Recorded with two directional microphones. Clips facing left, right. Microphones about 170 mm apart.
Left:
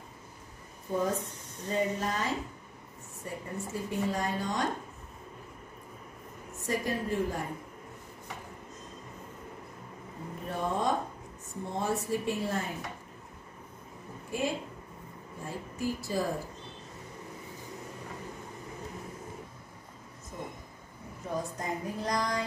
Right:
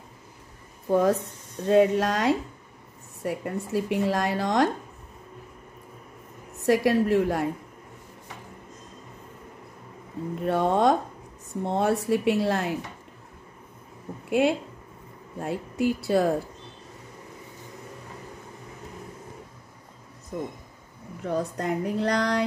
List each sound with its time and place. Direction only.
0.8 s speech: 80° right
6.6 s speech: 75° right (ahead or behind)
10.4 s speech: 75° right (ahead or behind)
14.4 s speech: 65° right (ahead or behind)
20.3 s speech: 70° right (ahead or behind)